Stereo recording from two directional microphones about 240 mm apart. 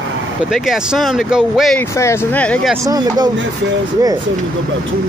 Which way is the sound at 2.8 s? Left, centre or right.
Centre.